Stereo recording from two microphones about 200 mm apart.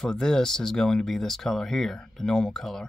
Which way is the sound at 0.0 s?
5° left (ahead or behind).